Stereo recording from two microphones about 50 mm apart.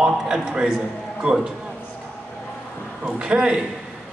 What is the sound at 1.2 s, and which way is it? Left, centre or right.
Speech, right.